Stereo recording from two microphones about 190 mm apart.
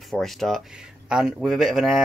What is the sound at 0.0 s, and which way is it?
Speech, centre (ahead or behind).